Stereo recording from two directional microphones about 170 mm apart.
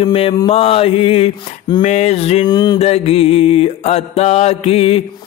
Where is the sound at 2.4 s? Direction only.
25° left (ahead or behind).